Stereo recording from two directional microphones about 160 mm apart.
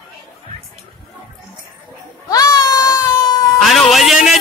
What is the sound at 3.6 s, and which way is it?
Music, centre (ahead or behind).